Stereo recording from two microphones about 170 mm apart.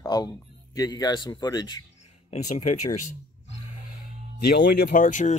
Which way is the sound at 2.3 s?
45° left (ahead or behind).